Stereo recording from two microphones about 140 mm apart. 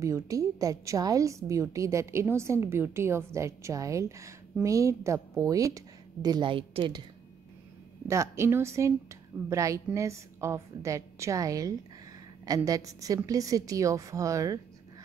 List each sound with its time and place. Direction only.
0.0 s a woman's voice: 25° right (ahead or behind)
8.1 s a woman's voice: 20° right (ahead or behind)